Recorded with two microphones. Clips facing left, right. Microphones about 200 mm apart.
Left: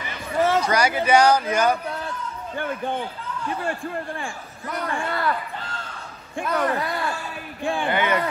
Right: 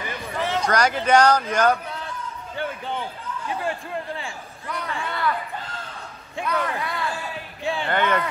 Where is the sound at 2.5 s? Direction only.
50° left (ahead or behind).